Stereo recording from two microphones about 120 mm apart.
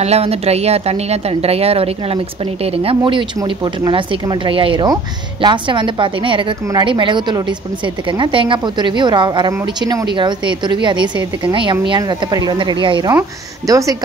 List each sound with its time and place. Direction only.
0.0 s a woman's voice: 60° right (ahead or behind); by 13.9 s 30° right (ahead or behind)